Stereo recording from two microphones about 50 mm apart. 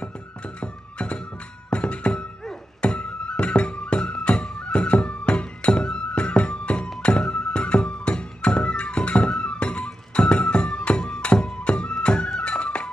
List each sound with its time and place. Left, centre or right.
0.6 s music: left